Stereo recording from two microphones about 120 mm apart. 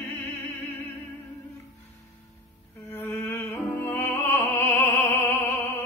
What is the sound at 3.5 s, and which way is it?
Music, 20° left (ahead or behind).